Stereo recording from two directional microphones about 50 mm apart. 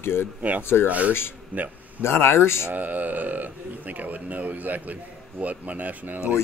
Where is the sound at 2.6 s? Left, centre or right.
Right.